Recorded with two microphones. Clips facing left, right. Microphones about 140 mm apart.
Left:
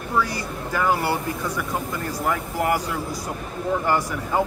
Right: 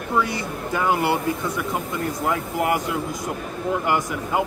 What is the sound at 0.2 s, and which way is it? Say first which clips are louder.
Speech: right 1 dB; 20° right (ahead or behind).